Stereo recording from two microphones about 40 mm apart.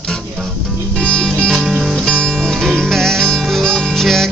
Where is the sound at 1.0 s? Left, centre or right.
Left.